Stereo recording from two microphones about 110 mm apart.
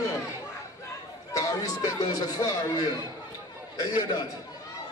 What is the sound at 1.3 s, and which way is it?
Speech, 35° left (ahead or behind).